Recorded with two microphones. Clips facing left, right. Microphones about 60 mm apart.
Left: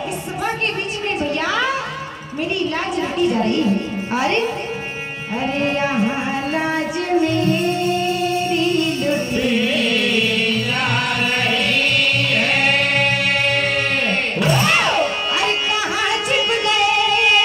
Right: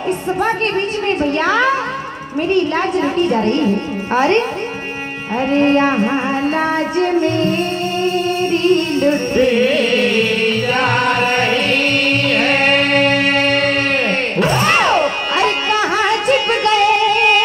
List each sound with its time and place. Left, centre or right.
1.2 s a woman's voice: right
3.2 s a woman's voice: right
4.1 s music: right
12.3 s singing: right
14.4 s music: right